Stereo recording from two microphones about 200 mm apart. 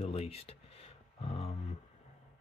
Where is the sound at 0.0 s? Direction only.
30° left (ahead or behind).